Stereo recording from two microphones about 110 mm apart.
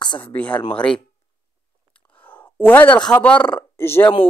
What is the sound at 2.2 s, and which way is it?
Speech, 15° left (ahead or behind).